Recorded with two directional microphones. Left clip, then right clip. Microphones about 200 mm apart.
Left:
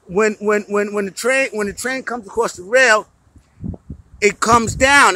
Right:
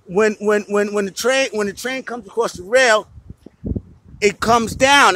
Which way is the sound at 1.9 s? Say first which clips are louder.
Left 2 dB; 5° left (ahead or behind).